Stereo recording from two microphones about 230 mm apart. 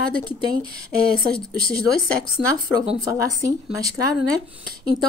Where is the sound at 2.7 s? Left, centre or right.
Right.